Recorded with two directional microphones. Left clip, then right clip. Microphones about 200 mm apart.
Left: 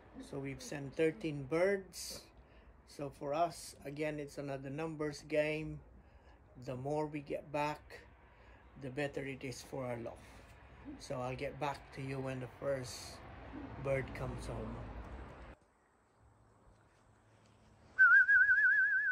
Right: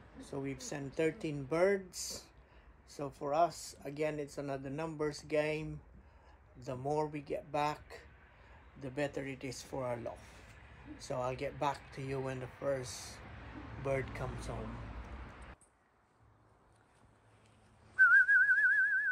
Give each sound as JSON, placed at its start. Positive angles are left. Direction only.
{"t": 0.2, "sound": "speech", "side_deg": 0}
{"t": 17.9, "sound": "whistling", "side_deg": 10}